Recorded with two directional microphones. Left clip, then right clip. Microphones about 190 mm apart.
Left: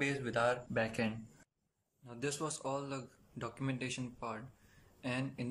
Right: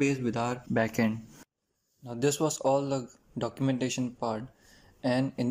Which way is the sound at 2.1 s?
35° right (ahead or behind).